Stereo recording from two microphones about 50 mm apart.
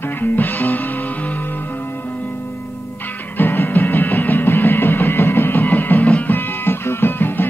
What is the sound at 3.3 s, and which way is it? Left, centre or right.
Music, left.